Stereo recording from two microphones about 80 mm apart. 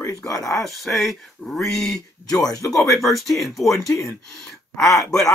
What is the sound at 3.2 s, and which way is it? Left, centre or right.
Speech, centre.